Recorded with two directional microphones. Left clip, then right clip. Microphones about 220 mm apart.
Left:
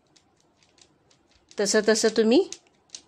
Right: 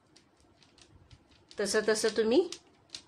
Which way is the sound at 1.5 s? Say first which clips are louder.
Left 7 dB; 40° left (ahead or behind).